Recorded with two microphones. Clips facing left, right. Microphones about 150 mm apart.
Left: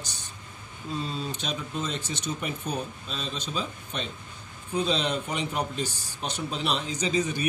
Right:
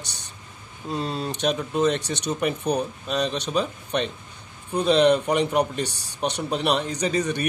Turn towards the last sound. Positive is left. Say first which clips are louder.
# right 3 dB
turn(degrees=-70)  # may be behind; listen again after turning